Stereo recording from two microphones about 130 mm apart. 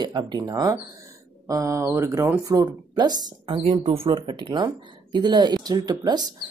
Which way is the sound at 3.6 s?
50° right (ahead or behind).